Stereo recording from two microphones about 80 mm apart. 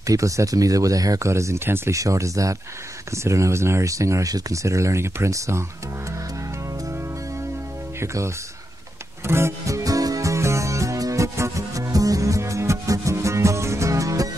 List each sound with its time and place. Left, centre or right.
0.0 s speech: right
8.0 s speech: right
9.3 s music: right